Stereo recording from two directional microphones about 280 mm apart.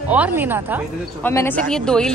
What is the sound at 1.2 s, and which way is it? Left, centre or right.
Speech, centre.